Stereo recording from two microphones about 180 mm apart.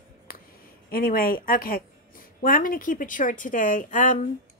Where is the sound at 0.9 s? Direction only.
55° left (ahead or behind).